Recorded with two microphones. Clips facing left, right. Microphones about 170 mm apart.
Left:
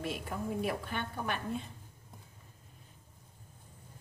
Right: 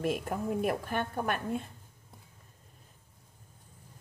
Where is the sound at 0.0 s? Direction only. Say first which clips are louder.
Right 6 dB; 50° right (ahead or behind).